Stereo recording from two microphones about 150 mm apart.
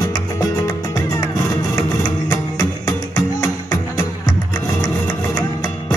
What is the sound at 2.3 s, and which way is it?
Music, 25° left (ahead or behind).